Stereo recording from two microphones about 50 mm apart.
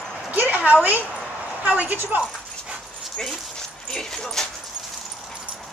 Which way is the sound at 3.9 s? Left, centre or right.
Centre.